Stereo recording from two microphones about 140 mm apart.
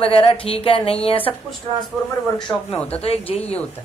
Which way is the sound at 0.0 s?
40° left (ahead or behind).